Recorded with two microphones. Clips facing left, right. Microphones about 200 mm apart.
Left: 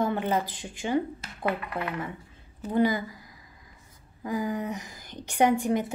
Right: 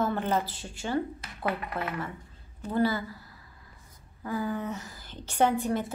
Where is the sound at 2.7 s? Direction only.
15° left (ahead or behind).